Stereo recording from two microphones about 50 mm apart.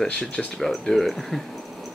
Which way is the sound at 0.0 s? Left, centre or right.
Centre.